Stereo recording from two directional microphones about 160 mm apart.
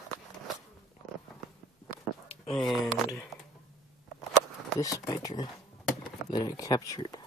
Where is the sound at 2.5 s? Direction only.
5° left (ahead or behind).